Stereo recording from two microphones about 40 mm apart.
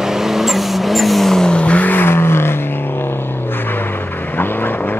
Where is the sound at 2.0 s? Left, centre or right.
Left.